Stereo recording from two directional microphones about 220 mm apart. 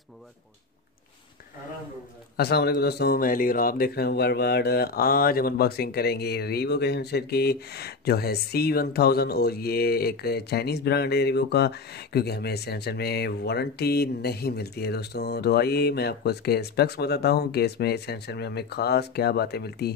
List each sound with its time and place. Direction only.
2.3 s speech: 45° left (ahead or behind)